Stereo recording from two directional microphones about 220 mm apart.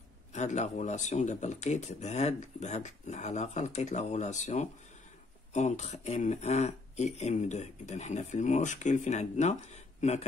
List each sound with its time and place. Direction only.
0.3 s speech: 30° left (ahead or behind)